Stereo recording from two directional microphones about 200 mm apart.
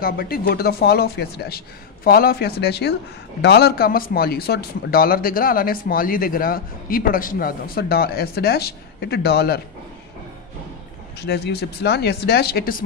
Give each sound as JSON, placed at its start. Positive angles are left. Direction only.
{"t": 0.0, "sound": "speech", "side_deg": 50}
{"t": 11.1, "sound": "speech", "side_deg": 55}